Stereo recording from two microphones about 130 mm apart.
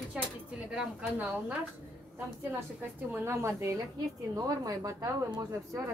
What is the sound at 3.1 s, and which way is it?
Speech, 20° right (ahead or behind).